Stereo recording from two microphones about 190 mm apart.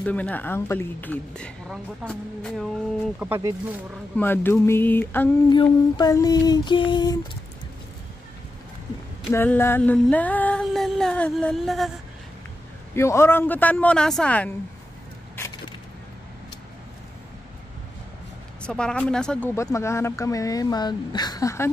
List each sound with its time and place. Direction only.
0.0 s speech: 5° left (ahead or behind)
3.2 s speech: 15° right (ahead or behind)
4.2 s speech: 10° left (ahead or behind)
5.5 s female singing: 20° left (ahead or behind)
9.3 s a sound: 10° left (ahead or behind)
12.9 s speech: 15° left (ahead or behind)
18.6 s speech: 5° left (ahead or behind)